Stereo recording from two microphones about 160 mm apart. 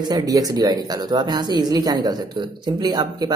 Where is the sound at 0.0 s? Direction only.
25° right (ahead or behind).